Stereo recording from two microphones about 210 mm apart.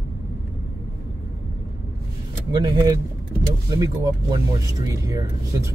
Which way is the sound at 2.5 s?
20° right (ahead or behind).